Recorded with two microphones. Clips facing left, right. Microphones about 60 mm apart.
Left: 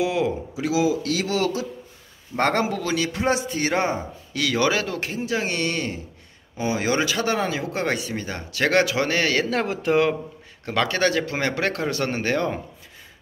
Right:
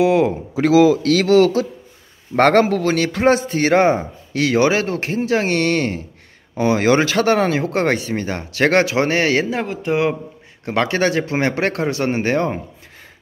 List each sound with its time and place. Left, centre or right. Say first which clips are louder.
0.0 s speech: right 8 dB; right
0.6 s speech: right 10 dB; right
1.2 s speech: right 11 dB; right
2.3 s speech: right 8 dB; right
10.6 s speech: right 4 dB; right